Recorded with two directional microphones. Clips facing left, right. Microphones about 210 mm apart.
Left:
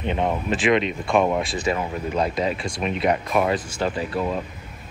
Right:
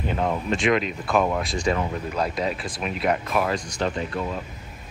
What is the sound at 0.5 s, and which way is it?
Speech, centre (ahead or behind).